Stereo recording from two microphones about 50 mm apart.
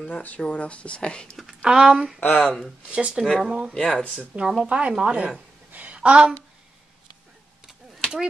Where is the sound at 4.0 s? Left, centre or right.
Left.